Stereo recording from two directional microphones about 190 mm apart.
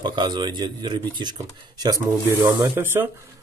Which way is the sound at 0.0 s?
25° right (ahead or behind).